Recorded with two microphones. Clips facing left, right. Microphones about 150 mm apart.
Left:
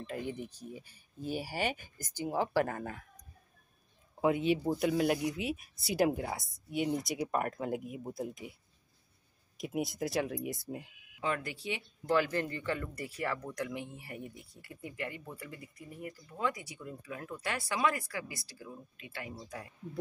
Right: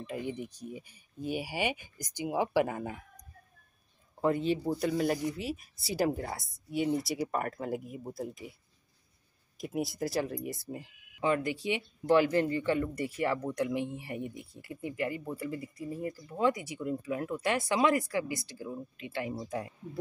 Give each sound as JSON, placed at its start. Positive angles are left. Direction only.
{"t": 0.5, "sound": "speech", "side_deg": -15}
{"t": 4.2, "sound": "speech", "side_deg": 5}
{"t": 9.6, "sound": "speech", "side_deg": 0}
{"t": 11.1, "sound": "speech", "side_deg": -20}